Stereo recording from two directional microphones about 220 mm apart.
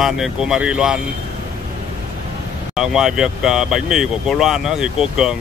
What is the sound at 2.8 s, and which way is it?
Speech, centre (ahead or behind).